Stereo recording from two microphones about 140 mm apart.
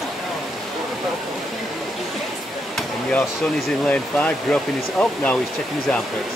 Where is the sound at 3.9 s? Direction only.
10° left (ahead or behind).